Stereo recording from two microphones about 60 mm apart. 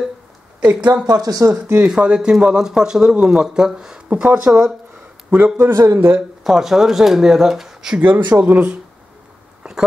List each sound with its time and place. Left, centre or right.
0.7 s speech: right
1.0 s speech: right
1.4 s speech: right
1.9 s speech: centre
5.3 s speech: right
5.9 s speech: right
6.4 s speech: centre
8.0 s speech: right
9.6 s a sound: centre